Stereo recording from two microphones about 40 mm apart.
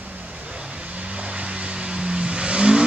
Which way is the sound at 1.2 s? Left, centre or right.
Right.